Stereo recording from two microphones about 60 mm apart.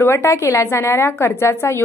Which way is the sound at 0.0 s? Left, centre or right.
Left.